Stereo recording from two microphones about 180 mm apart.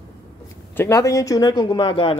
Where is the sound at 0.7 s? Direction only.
15° left (ahead or behind).